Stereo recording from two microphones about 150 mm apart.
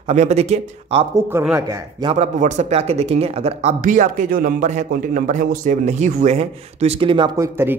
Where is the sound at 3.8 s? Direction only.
60° right (ahead or behind); by 7.3 s 35° right (ahead or behind).